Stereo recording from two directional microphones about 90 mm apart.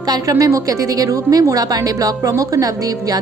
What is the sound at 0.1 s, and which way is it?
A woman's voice, 40° right (ahead or behind).